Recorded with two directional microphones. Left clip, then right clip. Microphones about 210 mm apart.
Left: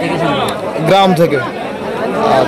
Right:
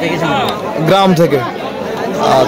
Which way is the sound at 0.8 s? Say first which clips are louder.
Left 1 dB; 10° right (ahead or behind).